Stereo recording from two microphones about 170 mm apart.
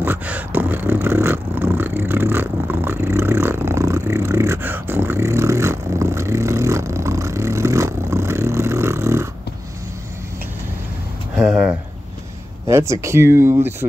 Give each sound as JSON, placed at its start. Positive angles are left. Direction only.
{"t": 0.0, "sound": "beatboxing", "side_deg": -10}
{"t": 11.3, "sound": "a sound", "side_deg": -5}
{"t": 12.6, "sound": "speech", "side_deg": -15}